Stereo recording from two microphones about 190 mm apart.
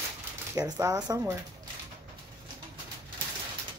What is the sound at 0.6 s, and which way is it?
Speech, 20° right (ahead or behind).